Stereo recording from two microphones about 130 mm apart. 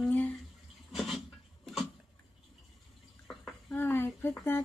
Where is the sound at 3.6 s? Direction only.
15° left (ahead or behind).